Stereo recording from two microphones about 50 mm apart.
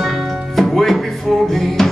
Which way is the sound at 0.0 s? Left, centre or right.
Centre.